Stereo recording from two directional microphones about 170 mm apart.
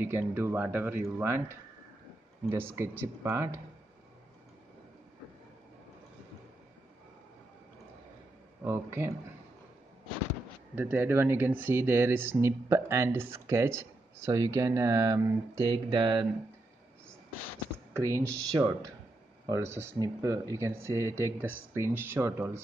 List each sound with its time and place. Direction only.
0.0 s speech: 15° right (ahead or behind)
8.6 s speech: 15° right (ahead or behind)
10.8 s speech: 10° right (ahead or behind); by 16.3 s 30° right (ahead or behind)
17.9 s speech: 15° right (ahead or behind)